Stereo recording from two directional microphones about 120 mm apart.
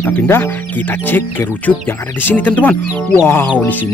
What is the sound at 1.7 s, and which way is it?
Speech, 20° left (ahead or behind).